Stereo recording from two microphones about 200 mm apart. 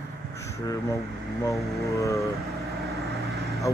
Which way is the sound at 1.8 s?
15° left (ahead or behind).